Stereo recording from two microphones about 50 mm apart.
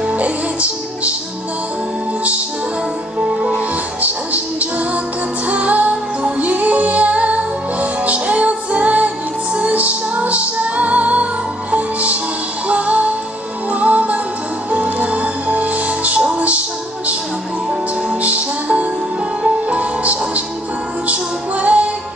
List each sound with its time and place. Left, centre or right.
0.0 s music: right
3.2 s music: centre
4.0 s music: right
18.2 s music: right